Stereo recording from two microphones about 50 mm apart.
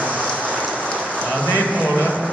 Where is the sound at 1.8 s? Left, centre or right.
Left.